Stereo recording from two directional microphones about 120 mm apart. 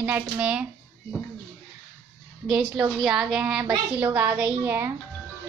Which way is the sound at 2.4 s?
5° right (ahead or behind).